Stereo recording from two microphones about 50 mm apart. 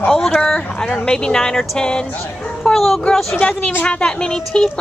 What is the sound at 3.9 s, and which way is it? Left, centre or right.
Speech, centre.